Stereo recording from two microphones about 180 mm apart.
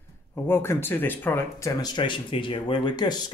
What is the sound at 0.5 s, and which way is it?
Speech, 15° left (ahead or behind).